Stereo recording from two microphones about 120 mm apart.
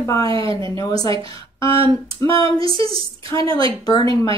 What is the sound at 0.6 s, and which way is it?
Speech, 30° left (ahead or behind).